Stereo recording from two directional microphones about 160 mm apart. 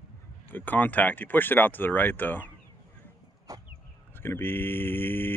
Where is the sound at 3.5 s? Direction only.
20° right (ahead or behind).